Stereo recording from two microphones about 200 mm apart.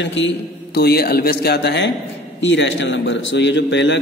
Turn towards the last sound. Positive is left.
turn(degrees=65)  # may be behind; listen again after turning